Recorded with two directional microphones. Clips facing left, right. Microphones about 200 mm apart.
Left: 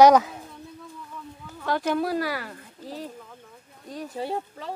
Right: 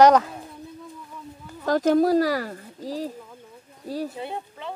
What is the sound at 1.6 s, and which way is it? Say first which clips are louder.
Speech: right 6 dB; 40° right (ahead or behind).